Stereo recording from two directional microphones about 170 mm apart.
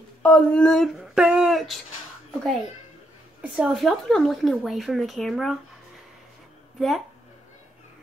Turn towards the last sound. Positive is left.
turn(degrees=0)  # may be behind; listen again after turning